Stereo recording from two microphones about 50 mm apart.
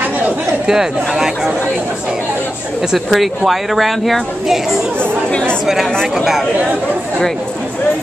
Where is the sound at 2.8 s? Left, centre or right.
Centre.